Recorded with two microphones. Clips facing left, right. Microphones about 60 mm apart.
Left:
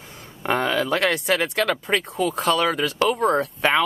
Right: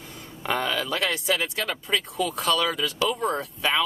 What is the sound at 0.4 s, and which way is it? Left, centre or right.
Speech, left.